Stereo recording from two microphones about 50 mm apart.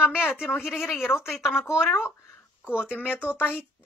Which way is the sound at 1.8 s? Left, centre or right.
Left.